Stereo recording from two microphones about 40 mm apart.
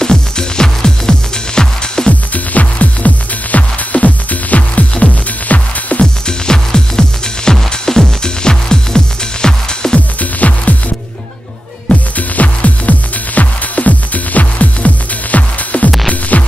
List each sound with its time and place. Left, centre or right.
0.0 s music: centre
2.0 s music: left
6.2 s music: centre
9.9 s music: left
12.2 s music: left